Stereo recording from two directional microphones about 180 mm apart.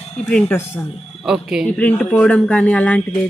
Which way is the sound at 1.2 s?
5° right (ahead or behind).